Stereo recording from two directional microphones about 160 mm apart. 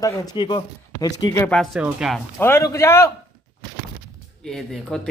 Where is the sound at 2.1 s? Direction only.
15° left (ahead or behind).